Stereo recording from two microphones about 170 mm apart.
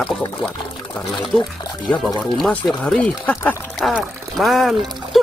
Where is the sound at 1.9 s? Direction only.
Centre (ahead or behind).